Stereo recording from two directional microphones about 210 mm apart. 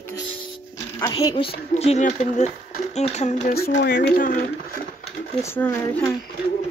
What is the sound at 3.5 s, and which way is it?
Speech, 50° left (ahead or behind).